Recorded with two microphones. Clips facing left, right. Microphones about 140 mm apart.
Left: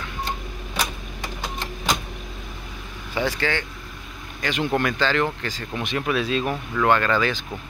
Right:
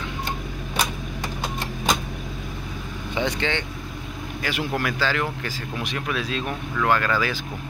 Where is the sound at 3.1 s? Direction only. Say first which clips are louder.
Left 1 dB; 20° right (ahead or behind).